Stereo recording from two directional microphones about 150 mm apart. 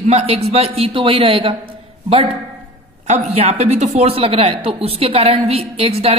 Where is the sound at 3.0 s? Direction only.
45° right (ahead or behind).